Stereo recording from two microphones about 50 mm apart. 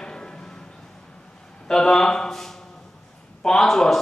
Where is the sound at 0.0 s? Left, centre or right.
Centre.